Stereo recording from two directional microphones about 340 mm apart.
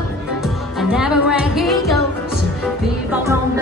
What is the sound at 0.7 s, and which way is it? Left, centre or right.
Music, centre.